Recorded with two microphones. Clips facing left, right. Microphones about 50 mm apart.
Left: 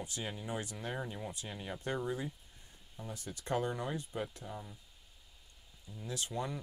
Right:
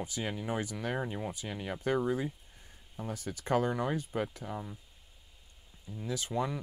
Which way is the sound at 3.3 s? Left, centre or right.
Right.